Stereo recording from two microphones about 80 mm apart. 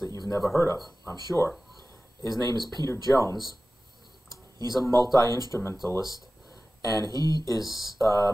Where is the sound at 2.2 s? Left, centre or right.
Left.